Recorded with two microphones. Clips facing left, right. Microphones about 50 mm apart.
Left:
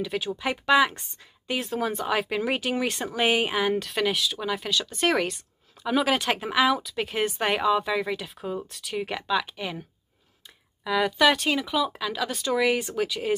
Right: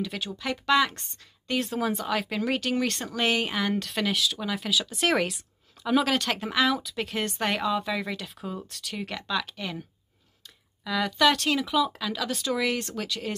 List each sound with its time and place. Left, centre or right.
0.0 s a woman's voice: centre